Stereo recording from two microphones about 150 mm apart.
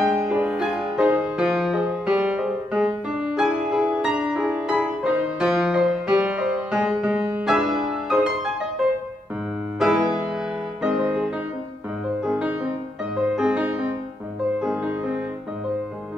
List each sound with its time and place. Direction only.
0.2 s music: 10° right (ahead or behind)
9.8 s music: 5° right (ahead or behind)